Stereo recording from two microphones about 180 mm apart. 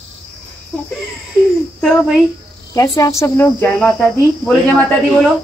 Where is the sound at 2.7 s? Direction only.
20° left (ahead or behind); by 4.5 s 5° left (ahead or behind).